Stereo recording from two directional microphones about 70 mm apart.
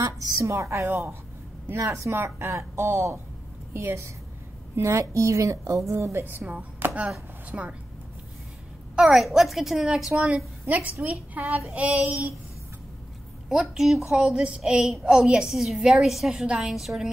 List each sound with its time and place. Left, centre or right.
0.4 s a woman's voice: right
0.8 s a woman's voice: right
1.8 s a woman's voice: right
7.5 s a woman's voice: centre
8.9 s a woman's voice: centre
10.7 s a woman's voice: right
13.5 s a woman's voice: centre